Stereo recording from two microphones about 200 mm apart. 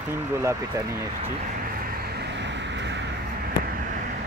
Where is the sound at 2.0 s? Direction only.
60° right (ahead or behind).